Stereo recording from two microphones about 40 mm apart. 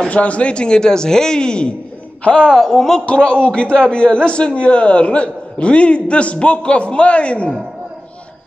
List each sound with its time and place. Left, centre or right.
0.1 s a man's voice: left
2.5 s speech: centre
3.1 s a man's voice: left